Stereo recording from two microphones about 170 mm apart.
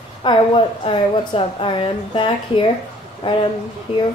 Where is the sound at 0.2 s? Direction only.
30° left (ahead or behind).